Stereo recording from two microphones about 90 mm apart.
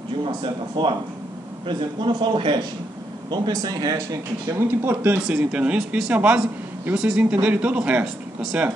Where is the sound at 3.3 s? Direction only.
50° right (ahead or behind).